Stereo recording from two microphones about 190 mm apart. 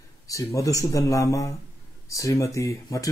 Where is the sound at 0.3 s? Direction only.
15° left (ahead or behind).